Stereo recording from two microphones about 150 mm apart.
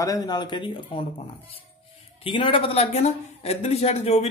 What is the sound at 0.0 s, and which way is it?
A man's voice, 25° left (ahead or behind).